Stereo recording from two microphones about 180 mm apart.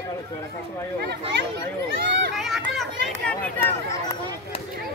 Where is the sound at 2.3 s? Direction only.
Centre (ahead or behind).